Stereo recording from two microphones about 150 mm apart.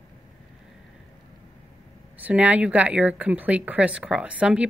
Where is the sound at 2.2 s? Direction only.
10° right (ahead or behind).